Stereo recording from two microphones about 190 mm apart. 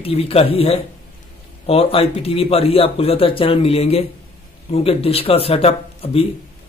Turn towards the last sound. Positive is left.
turn(degrees=30)  # may be behind; listen again after turning